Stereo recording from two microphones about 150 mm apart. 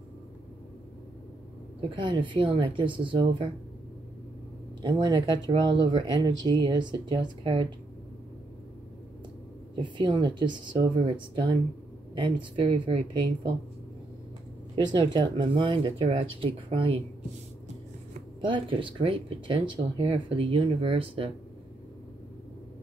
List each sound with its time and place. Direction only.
1.8 s speech: 35° right (ahead or behind)
4.8 s speech: 30° right (ahead or behind)
9.8 s speech: 30° right (ahead or behind)
12.2 s speech: 35° right (ahead or behind)
14.8 s speech: 30° right (ahead or behind)
18.4 s speech: 35° right (ahead or behind)